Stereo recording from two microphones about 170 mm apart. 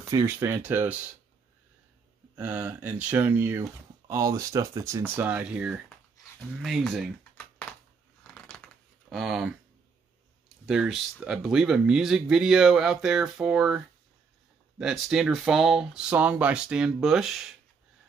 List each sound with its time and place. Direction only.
0.1 s speech: 15° right (ahead or behind)
2.3 s speech: 10° right (ahead or behind)
8.2 s scissors: 5° left (ahead or behind)
9.1 s speech: centre (ahead or behind)
10.7 s speech: 5° right (ahead or behind)